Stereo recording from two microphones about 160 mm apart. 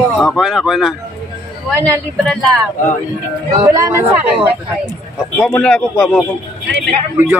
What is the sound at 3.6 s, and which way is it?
Speech, 20° right (ahead or behind).